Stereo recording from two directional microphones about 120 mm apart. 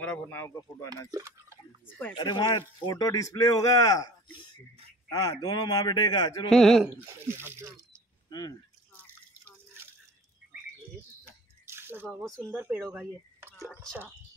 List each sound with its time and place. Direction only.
0.0 s speech: 15° left (ahead or behind)
1.1 s speech: 25° right (ahead or behind)
2.1 s speech: 35° left (ahead or behind)
6.5 s speech: 5° left (ahead or behind)
7.2 s speech: 20° right (ahead or behind)
8.3 s speech: 35° left (ahead or behind)
8.9 s drip: 20° right (ahead or behind)
11.6 s a sound: 20° right (ahead or behind)
12.1 s speech: 5° left (ahead or behind)
12.4 s speech: 10° right (ahead or behind)